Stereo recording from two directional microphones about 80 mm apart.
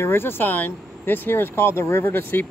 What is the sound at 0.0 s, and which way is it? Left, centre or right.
Speech, left.